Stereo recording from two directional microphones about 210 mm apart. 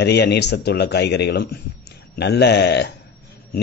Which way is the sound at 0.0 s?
55° left (ahead or behind).